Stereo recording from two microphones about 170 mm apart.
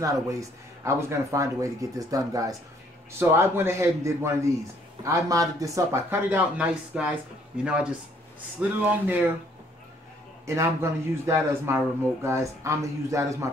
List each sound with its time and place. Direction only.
0.0 s speech: 20° right (ahead or behind)
10.4 s speech: 15° right (ahead or behind)